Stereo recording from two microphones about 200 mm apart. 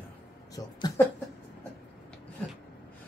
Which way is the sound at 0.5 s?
15° left (ahead or behind).